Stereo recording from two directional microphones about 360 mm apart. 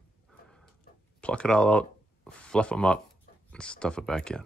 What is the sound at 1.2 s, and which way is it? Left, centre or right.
Speech, centre.